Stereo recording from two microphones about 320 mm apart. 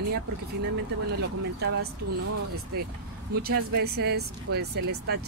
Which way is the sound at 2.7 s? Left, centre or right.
Right.